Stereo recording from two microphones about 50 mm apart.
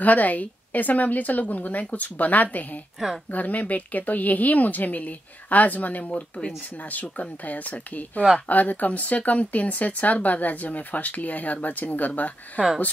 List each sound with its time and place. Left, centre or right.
0.0 s speech: left
6.3 s speech: left
6.9 s speech: left